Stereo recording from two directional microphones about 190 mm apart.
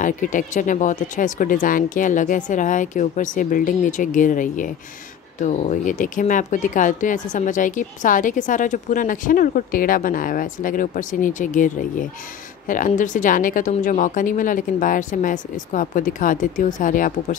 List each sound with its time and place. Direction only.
0.0 s speech: 45° left (ahead or behind)